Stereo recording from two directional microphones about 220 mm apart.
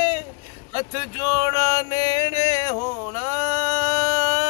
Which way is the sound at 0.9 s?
15° right (ahead or behind).